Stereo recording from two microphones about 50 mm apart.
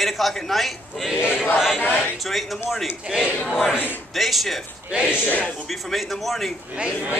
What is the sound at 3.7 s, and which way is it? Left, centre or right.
Choir, left.